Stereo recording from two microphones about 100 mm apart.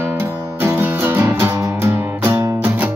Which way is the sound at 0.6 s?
20° right (ahead or behind).